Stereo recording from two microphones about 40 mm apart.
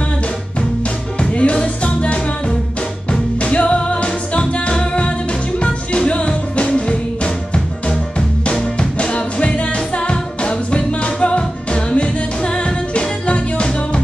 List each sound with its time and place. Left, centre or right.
1.3 s music: left
8.5 s music: left